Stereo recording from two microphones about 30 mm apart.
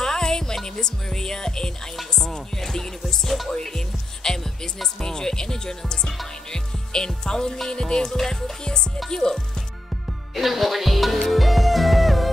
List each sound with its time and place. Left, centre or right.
0.0 s music: centre
0.7 s speech: centre
2.2 s music: centre
3.3 s music: centre
3.6 s speech: centre
10.3 s music: centre